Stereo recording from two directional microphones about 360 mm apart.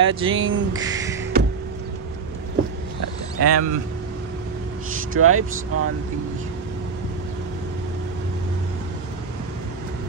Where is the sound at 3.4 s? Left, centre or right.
Right.